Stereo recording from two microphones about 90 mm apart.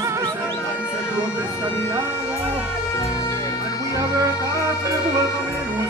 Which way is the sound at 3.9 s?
35° right (ahead or behind).